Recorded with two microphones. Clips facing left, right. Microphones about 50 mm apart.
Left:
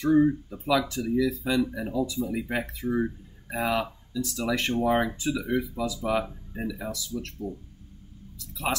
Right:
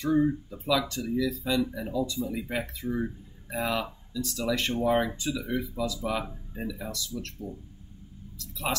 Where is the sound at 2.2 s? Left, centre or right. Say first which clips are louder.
Left 2 dB; left.